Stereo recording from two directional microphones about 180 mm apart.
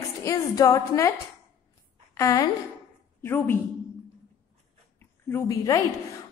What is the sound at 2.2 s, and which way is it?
A woman's voice, 15° left (ahead or behind).